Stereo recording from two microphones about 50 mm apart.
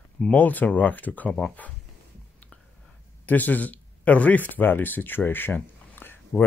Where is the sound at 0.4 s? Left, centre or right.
Left.